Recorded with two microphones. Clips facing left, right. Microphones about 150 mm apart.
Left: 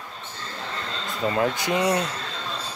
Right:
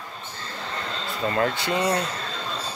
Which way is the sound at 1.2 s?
15° left (ahead or behind).